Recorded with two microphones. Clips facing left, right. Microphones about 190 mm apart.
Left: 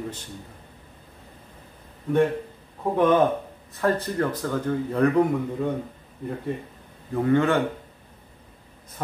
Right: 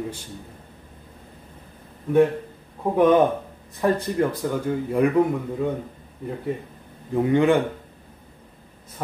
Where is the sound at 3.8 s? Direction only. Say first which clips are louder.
Right 2 dB; 15° right (ahead or behind).